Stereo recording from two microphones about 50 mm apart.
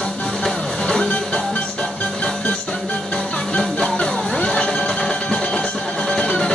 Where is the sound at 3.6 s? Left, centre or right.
Centre.